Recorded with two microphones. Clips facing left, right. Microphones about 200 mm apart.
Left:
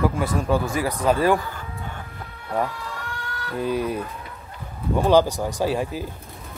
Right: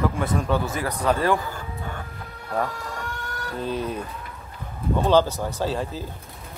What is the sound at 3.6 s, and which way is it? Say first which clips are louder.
Speech: left 4 dB; 10° left (ahead or behind).